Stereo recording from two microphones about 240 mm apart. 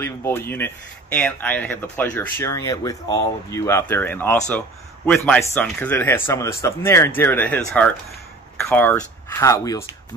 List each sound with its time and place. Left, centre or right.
0.0 s speech: centre
8.6 s speech: centre